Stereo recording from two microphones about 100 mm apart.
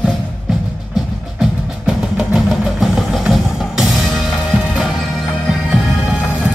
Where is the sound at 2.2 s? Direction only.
5° right (ahead or behind).